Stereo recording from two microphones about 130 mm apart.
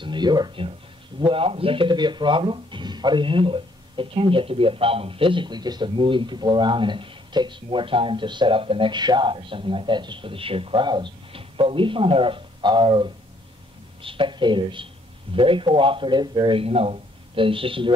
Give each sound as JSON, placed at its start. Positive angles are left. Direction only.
{"t": 0.0, "sound": "speech", "side_deg": -35}